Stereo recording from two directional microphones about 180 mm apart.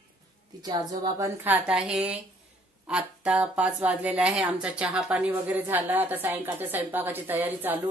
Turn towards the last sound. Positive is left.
turn(degrees=-10)  # may be behind; listen again after turning